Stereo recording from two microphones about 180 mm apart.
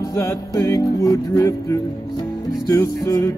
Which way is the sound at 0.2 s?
15° left (ahead or behind).